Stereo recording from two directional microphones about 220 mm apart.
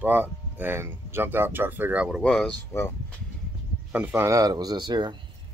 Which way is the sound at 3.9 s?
10° right (ahead or behind).